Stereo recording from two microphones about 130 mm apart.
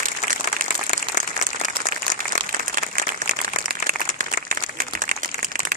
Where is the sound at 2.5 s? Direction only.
90° right.